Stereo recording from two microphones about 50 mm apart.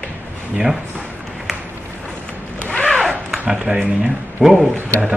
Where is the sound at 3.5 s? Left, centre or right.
Centre.